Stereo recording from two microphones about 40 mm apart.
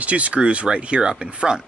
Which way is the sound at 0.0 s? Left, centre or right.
Right.